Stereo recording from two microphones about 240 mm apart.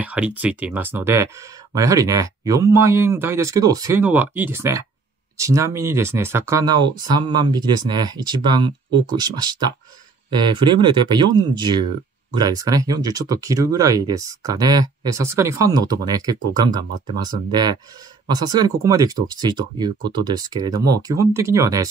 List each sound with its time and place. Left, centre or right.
0.0 s speech: centre
17.5 s speech: centre